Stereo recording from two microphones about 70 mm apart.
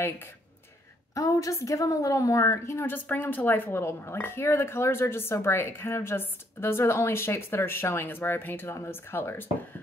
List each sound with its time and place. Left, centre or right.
1.1 s a woman's voice: left